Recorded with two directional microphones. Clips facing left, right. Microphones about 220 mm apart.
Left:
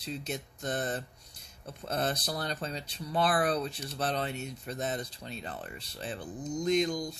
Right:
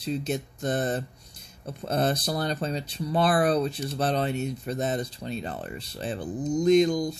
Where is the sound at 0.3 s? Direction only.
30° right (ahead or behind).